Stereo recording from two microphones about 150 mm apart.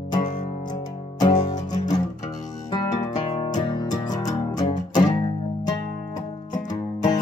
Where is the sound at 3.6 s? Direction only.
30° left (ahead or behind).